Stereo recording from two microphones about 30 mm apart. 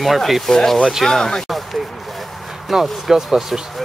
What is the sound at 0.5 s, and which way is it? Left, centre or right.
Speech, centre.